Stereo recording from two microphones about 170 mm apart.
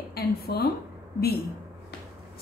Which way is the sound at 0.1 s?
65° left (ahead or behind).